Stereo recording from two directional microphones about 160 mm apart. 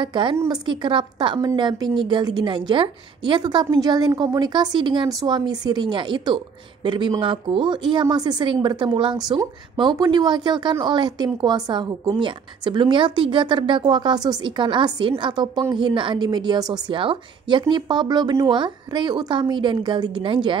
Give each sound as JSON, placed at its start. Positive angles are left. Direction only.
{"t": 0.0, "sound": "a woman's voice", "side_deg": -30}